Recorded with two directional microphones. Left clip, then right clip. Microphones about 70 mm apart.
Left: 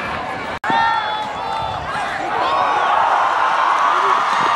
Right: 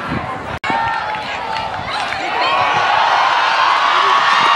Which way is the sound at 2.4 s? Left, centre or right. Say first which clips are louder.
Right 2 dB; right.